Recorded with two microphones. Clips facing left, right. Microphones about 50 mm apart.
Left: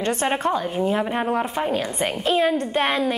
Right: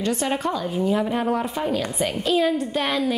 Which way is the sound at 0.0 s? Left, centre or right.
Left.